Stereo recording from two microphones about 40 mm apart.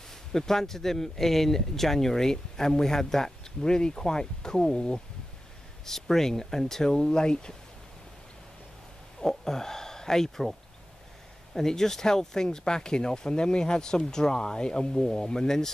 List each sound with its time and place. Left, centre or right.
0.3 s speech: centre
9.3 s speech: centre
11.5 s speech: centre